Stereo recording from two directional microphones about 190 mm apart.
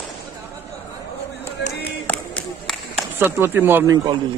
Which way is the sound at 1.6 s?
55° left (ahead or behind).